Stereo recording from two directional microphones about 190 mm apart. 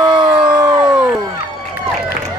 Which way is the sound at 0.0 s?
20° right (ahead or behind).